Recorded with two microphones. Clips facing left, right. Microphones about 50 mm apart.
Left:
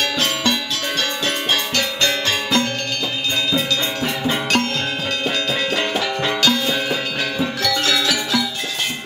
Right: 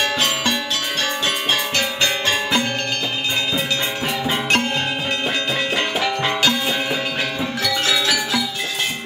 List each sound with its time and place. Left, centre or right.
1.2 s music: centre
5.8 s music: centre